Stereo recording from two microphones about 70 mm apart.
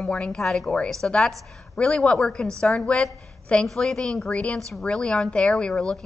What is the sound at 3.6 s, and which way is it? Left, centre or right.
A woman's voice, centre.